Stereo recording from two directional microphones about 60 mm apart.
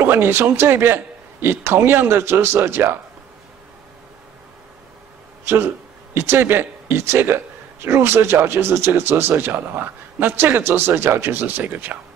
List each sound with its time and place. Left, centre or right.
0.0 s a man's voice: right
5.4 s a man's voice: right